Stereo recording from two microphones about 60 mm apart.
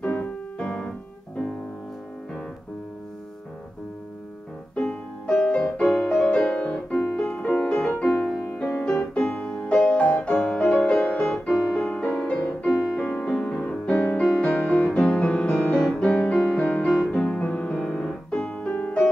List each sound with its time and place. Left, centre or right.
0.0 s piano: left
4.7 s music: centre
8.0 s music: centre
11.3 s music: centre; by 17.7 s left
17.7 s piano: centre
18.5 s piano: left